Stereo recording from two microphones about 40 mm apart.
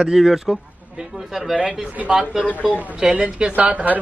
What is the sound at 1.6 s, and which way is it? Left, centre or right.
Speech, right.